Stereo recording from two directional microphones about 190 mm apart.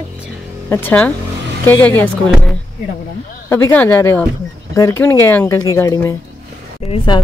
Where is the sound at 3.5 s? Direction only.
10° left (ahead or behind).